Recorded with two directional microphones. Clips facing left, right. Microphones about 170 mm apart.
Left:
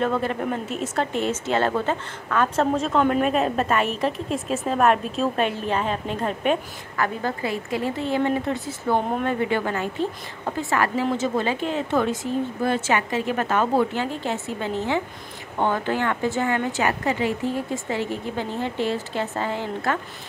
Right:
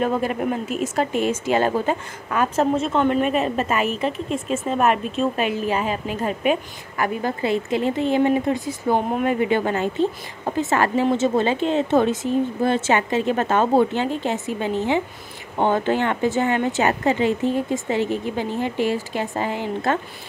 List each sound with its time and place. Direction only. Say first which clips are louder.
0.0 s a woman's voice: right 2 dB; 15° right (ahead or behind)
7.2 s a woman's voice: right 4 dB; 20° right (ahead or behind)